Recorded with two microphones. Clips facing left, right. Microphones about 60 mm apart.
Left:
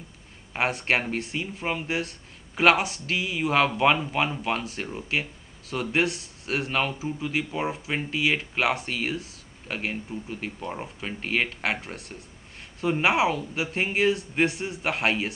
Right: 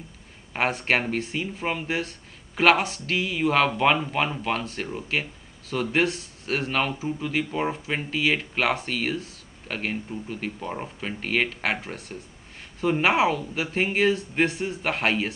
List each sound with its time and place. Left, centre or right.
0.5 s speech: centre